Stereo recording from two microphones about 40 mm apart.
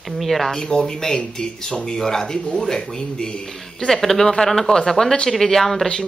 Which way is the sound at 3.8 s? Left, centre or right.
Centre.